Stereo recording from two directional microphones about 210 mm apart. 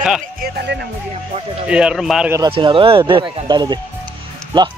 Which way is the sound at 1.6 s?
5° right (ahead or behind).